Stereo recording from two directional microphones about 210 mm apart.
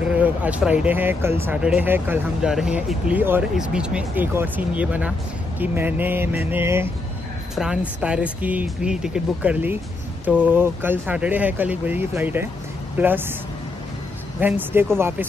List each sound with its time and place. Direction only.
0.0 s a woman's voice: 5° right (ahead or behind)
14.4 s speech: 10° right (ahead or behind)